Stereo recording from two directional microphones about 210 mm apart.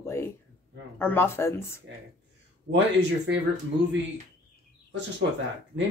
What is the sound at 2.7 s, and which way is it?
Speech, 55° right (ahead or behind).